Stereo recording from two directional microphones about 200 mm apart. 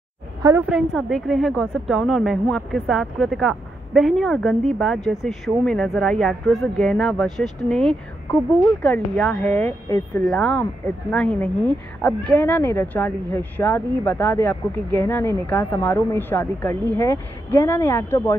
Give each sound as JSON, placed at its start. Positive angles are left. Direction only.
{"t": 0.4, "sound": "a woman's voice", "side_deg": -15}
{"t": 0.7, "sound": "a woman's voice", "side_deg": 0}